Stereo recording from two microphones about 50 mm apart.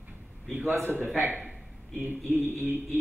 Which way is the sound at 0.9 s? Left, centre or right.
Right.